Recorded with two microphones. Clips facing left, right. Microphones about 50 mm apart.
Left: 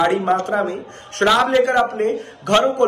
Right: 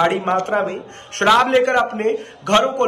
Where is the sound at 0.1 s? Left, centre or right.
Right.